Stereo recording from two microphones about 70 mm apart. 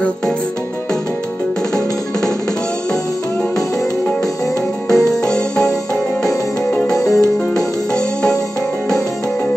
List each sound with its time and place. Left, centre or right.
4.8 s music: centre
6.9 s music: left
7.5 s music: centre